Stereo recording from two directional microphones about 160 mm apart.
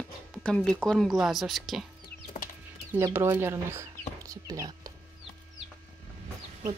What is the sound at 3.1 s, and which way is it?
Speech, 15° right (ahead or behind).